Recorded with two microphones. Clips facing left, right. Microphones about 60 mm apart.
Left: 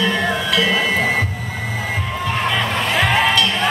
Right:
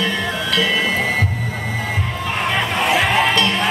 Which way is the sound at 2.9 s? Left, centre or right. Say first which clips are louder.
Left 1 dB; centre.